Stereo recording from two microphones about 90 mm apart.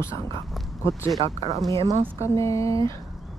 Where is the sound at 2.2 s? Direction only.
35° left (ahead or behind).